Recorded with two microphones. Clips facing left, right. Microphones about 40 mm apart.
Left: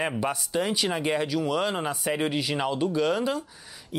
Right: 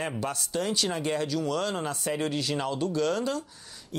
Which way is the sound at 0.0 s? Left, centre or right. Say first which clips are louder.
Left 4 dB; centre.